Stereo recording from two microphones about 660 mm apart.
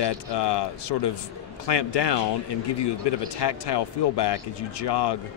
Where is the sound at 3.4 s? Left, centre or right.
Left.